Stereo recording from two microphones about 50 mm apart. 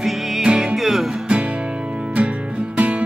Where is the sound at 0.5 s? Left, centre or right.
Centre.